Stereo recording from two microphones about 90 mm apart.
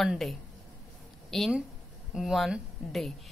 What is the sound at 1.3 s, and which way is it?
Speech, 5° left (ahead or behind).